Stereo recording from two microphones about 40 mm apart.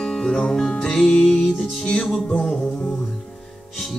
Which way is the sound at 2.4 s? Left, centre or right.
Centre.